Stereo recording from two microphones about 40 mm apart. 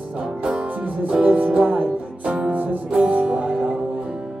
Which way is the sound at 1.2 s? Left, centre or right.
Right.